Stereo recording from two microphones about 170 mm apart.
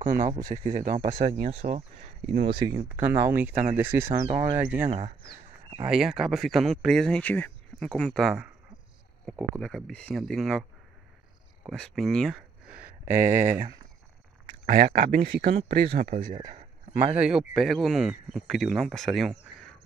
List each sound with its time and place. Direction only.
0.0 s speech: 55° right (ahead or behind)
2.4 s speech: 25° right (ahead or behind)
2.9 s speech: 10° right (ahead or behind)
5.9 s speech: centre (ahead or behind)
11.6 s speech: centre (ahead or behind)
13.1 s speech: 45° right (ahead or behind)
14.7 s speech: 60° right (ahead or behind); by 17.0 s 45° right (ahead or behind)
17.0 s speech: 10° right (ahead or behind)